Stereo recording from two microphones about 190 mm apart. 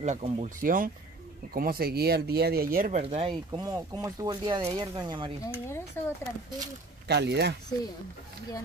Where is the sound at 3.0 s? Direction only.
30° right (ahead or behind).